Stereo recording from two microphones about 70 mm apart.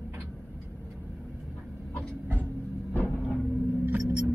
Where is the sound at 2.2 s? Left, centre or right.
Right.